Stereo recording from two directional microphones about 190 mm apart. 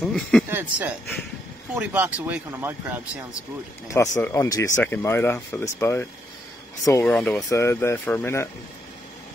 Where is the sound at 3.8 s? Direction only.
15° left (ahead or behind).